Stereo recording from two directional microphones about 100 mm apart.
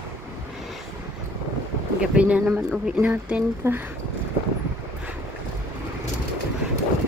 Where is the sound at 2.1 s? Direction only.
15° right (ahead or behind).